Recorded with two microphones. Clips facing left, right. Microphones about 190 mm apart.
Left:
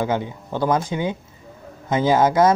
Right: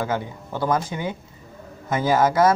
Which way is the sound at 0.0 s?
20° left (ahead or behind).